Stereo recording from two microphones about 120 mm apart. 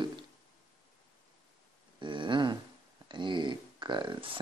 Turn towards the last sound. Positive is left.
turn(degrees=-45)  # may be behind; listen again after turning